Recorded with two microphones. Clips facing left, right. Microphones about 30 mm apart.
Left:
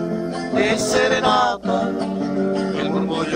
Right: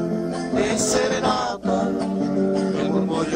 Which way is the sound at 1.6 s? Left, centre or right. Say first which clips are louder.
Left 1 dB; left.